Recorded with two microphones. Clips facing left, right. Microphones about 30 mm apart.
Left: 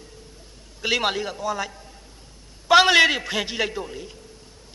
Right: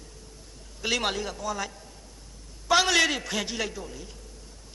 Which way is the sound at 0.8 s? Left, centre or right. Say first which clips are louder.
Left 4 dB; centre.